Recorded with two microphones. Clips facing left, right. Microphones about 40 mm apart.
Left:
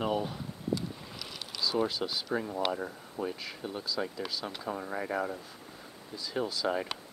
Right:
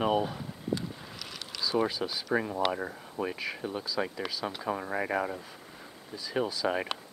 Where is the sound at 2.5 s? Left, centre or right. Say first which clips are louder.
Right 2 dB; right.